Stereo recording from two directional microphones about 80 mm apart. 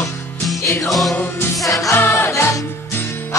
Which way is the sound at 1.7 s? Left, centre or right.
Left.